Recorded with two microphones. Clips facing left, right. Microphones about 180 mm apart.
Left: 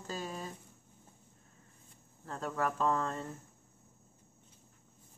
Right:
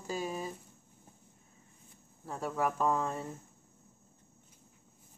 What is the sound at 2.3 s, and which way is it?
Speech, 10° right (ahead or behind).